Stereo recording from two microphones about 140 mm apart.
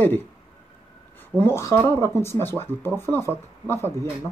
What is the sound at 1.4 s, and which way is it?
Speech, 20° left (ahead or behind).